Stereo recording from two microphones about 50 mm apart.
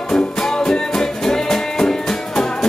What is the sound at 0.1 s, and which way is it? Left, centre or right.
Music, centre.